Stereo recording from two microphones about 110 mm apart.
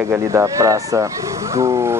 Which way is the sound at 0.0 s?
25° right (ahead or behind).